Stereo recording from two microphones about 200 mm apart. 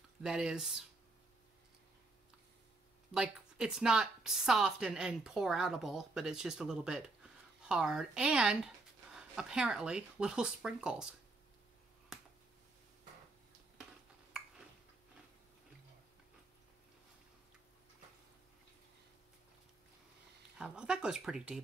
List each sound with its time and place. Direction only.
0.2 s speech: centre (ahead or behind)
3.2 s speech: 5° right (ahead or behind)
12.1 s finger snapping: centre (ahead or behind)
20.5 s speech: 5° right (ahead or behind)